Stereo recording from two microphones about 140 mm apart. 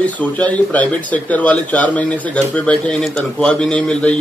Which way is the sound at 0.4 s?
10° left (ahead or behind).